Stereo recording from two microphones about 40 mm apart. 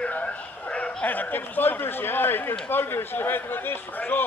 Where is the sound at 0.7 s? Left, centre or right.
Left.